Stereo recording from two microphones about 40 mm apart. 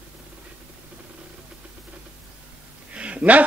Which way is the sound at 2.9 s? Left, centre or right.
Right.